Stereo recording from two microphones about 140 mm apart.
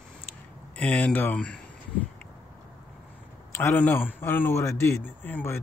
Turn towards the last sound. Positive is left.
turn(degrees=15)  # may be behind; listen again after turning